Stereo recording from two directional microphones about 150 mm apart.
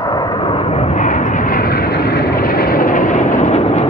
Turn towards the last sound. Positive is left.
turn(degrees=45)  # may be behind; listen again after turning